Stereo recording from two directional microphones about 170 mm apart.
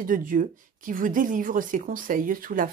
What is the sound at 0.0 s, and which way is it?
A woman's voice, 50° right (ahead or behind).